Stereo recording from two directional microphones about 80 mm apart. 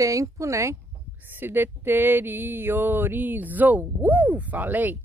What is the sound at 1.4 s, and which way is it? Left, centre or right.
Speech, right.